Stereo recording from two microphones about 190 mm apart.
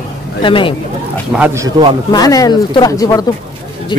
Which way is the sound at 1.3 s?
5° right (ahead or behind).